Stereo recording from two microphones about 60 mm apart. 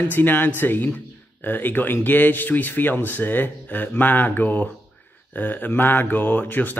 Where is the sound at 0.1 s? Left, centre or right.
Left.